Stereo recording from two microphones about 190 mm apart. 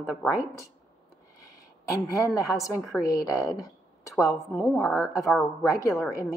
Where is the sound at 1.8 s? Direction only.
15° left (ahead or behind).